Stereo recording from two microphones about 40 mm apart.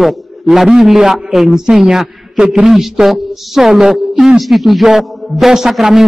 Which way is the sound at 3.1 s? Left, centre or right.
Centre.